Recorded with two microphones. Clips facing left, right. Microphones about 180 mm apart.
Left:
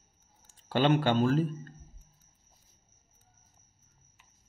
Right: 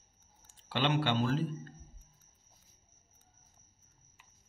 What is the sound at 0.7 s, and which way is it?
Speech, 45° left (ahead or behind).